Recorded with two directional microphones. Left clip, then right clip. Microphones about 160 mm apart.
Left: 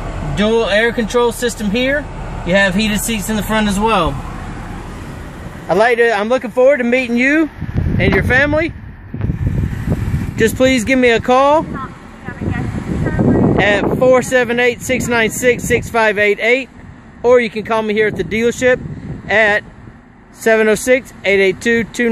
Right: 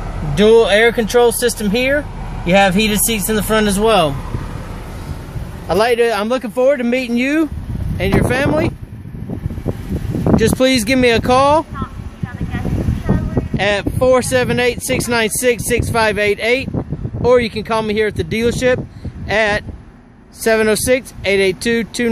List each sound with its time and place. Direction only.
0.4 s speech: 40° right (ahead or behind)
5.7 s speech: 5° right (ahead or behind)
10.3 s speech: centre (ahead or behind)
13.6 s speech: 5° right (ahead or behind)